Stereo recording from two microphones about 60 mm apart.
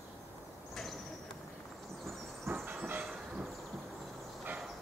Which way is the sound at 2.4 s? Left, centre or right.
Right.